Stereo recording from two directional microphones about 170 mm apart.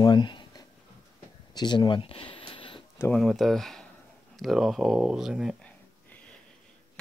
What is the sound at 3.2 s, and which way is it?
Speech, centre (ahead or behind).